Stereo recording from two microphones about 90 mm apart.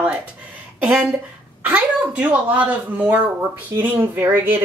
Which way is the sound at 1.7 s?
15° right (ahead or behind).